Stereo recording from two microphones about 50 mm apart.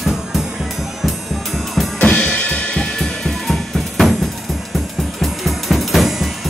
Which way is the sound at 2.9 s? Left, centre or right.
Centre.